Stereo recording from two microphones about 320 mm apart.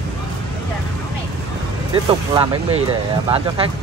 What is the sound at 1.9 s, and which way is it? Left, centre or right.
Speech, centre.